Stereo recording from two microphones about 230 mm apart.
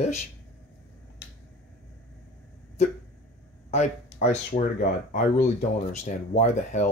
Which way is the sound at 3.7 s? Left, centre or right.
Left.